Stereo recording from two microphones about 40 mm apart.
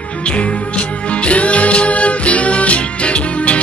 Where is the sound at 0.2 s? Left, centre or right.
Left.